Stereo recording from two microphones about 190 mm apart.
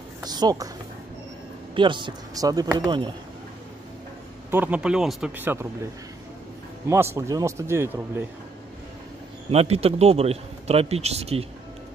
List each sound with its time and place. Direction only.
0.2 s speech: 20° right (ahead or behind)
1.8 s speech: 25° right (ahead or behind)
4.5 s a man's voice: 10° right (ahead or behind)
6.9 s a man's voice: 15° right (ahead or behind)
9.5 s a man's voice: 35° right (ahead or behind)